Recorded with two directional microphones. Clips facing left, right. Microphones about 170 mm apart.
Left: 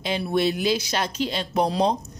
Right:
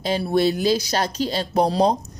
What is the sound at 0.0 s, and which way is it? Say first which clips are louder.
Speech: right 3 dB; 35° right (ahead or behind).